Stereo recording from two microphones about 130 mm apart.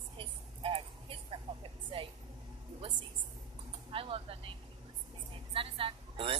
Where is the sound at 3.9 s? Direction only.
45° right (ahead or behind).